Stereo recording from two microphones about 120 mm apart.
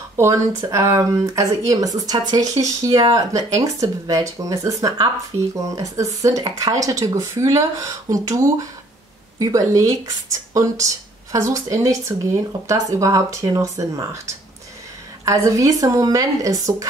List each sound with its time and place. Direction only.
0.2 s speech: 25° right (ahead or behind)